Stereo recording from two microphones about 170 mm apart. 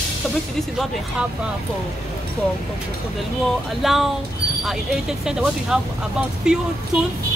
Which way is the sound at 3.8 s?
Centre (ahead or behind).